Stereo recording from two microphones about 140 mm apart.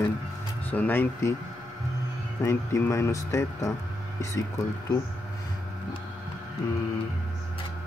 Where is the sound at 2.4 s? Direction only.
20° left (ahead or behind).